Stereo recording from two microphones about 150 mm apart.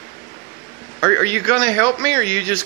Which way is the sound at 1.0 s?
10° left (ahead or behind).